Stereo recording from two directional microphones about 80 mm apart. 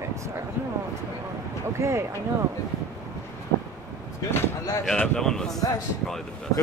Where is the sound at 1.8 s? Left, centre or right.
Right.